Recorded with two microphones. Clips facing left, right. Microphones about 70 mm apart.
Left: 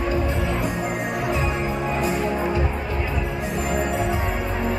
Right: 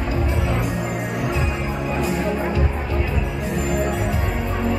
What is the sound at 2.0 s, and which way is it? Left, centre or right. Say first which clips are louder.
Music: right 2 dB; left.